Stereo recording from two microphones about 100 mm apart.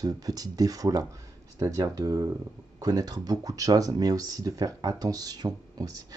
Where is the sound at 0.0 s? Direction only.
40° right (ahead or behind).